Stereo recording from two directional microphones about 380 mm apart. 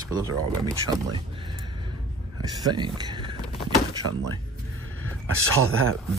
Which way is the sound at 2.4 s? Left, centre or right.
Centre.